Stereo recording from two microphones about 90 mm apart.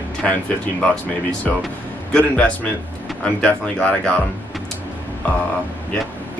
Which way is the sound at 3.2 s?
15° left (ahead or behind).